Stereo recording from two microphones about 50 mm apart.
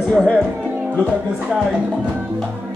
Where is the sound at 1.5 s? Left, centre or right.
Centre.